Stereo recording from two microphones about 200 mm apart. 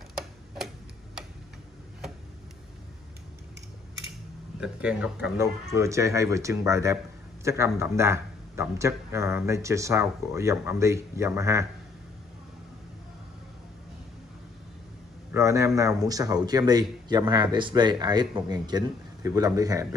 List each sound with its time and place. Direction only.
4.6 s speech: 5° right (ahead or behind)
15.3 s a man's voice: 15° right (ahead or behind)